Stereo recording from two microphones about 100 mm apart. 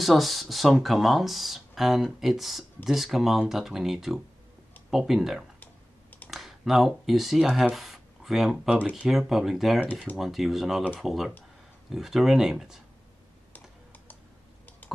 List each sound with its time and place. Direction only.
0.0 s speech: centre (ahead or behind)
5.6 s computer keyboard: 15° left (ahead or behind)
6.2 s speech: centre (ahead or behind)